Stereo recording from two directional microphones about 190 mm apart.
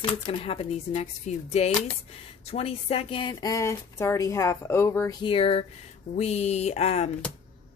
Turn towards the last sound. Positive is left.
turn(degrees=35)  # may be behind; listen again after turning